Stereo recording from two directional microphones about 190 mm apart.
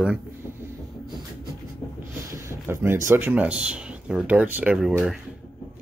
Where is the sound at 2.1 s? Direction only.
10° right (ahead or behind).